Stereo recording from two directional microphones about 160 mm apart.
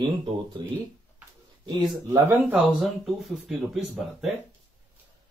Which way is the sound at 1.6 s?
25° right (ahead or behind).